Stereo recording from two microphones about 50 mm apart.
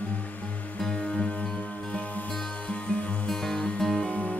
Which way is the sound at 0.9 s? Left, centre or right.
Centre.